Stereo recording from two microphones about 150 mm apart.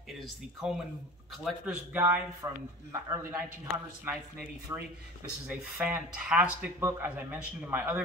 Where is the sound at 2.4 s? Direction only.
20° right (ahead or behind).